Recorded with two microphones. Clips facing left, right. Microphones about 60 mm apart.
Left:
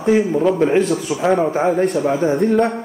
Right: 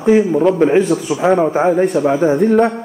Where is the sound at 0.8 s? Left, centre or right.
Centre.